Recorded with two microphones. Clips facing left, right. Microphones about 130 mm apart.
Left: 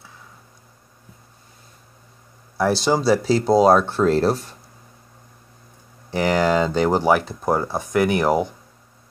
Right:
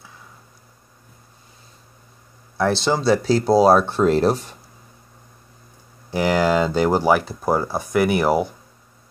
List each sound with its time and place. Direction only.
2.5 s speech: 10° left (ahead or behind); by 4.6 s 20° right (ahead or behind)
6.0 s speech: 5° right (ahead or behind)